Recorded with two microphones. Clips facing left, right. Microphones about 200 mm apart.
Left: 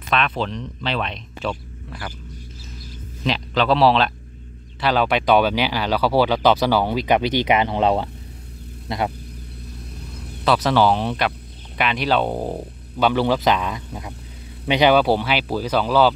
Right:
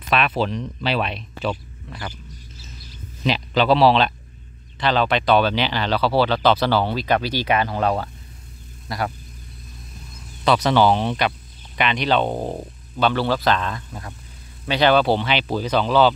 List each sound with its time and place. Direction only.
0.1 s speech: 5° right (ahead or behind)
3.3 s speech: 5° right (ahead or behind); by 9.1 s 20° left (ahead or behind)
9.9 s a sound: 65° left (ahead or behind)
10.4 s speech: 5° left (ahead or behind)
13.0 s speech: 15° left (ahead or behind)